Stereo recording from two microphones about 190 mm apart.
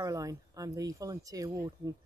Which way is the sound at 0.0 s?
20° right (ahead or behind).